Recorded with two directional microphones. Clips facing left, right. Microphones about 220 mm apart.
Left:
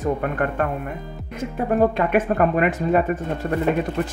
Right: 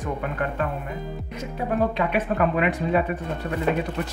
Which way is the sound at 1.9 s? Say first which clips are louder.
Left 4 dB; 50° left (ahead or behind).